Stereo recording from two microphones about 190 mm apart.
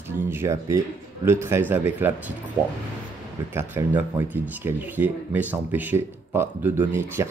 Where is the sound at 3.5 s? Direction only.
15° right (ahead or behind).